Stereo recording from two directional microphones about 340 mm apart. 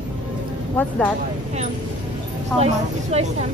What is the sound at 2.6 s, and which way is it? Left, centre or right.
Speech, centre.